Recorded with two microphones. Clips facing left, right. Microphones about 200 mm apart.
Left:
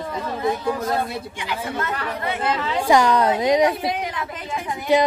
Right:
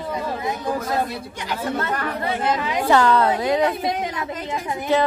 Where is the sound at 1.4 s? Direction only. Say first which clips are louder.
Right 3 dB; 40° right (ahead or behind).